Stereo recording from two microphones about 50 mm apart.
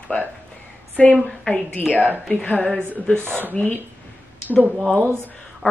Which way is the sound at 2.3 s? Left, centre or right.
Left.